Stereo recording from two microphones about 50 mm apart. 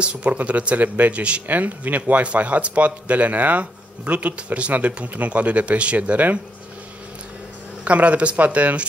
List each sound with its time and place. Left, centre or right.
0.0 s speech: right
7.8 s speech: right